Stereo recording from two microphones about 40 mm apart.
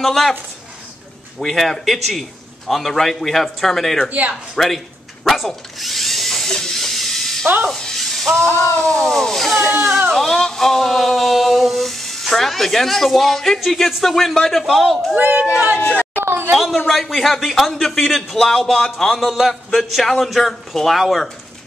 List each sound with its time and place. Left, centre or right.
0.0 s speech: centre
1.4 s a man's voice: centre
4.6 s drill: centre
7.7 s music: centre
8.8 s a man's voice: centre
9.7 s speech: centre
10.1 s speech: centre
15.1 s speech: right
15.8 s speech: left
16.2 s a sound: right
16.5 s speech: centre
18.4 s a man's voice: centre
19.1 s speech: centre
20.0 s a man's voice: centre